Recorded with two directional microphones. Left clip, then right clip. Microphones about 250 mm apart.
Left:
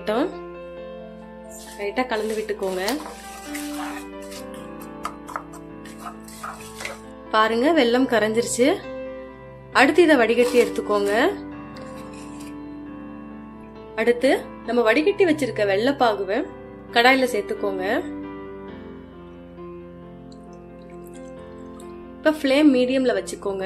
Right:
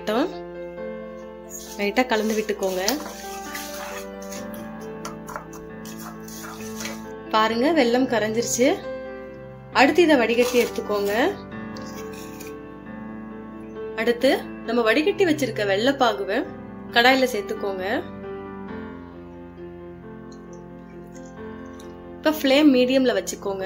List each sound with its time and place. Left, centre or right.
0.0 s speech: centre
1.8 s speech: centre
7.2 s speech: centre
9.8 s speech: centre
13.9 s speech: centre
22.2 s speech: centre